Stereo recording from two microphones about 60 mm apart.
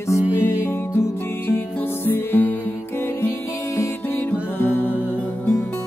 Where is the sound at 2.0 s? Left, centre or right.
Left.